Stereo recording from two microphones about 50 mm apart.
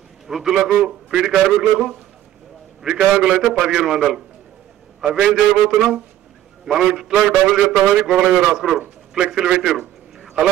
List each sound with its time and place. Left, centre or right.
0.3 s a man's voice: centre
2.8 s a man's voice: centre